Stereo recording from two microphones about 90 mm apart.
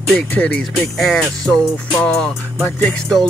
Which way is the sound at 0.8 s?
Centre (ahead or behind).